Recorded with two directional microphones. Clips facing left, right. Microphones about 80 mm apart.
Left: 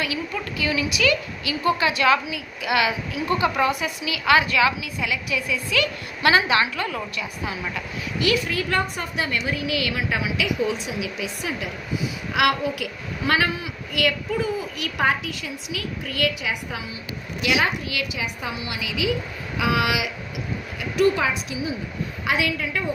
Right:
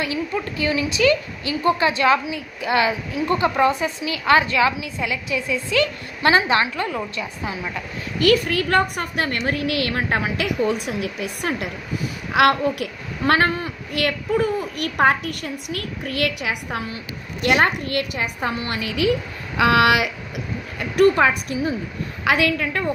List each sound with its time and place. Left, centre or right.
0.0 s a woman's voice: right
8.2 s a woman's voice: right
17.4 s a woman's voice: right